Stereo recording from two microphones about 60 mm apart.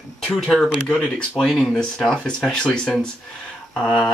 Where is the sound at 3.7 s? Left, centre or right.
Centre.